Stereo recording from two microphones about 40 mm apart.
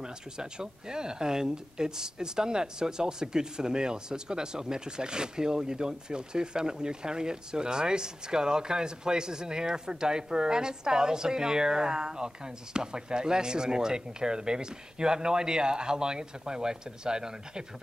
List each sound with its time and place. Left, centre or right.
0.0 s speech: centre